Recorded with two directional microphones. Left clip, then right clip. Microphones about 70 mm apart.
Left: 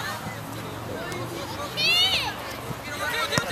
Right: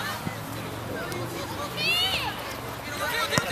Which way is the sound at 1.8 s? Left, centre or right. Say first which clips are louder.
Left 4 dB; left.